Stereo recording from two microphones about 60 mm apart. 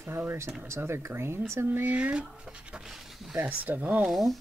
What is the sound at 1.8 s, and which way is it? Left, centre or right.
Speech, right.